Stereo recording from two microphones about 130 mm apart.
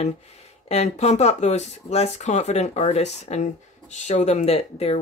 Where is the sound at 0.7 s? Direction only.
60° left (ahead or behind).